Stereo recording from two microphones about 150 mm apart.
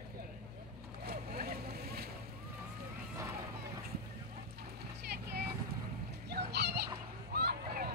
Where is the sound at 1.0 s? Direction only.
90° right.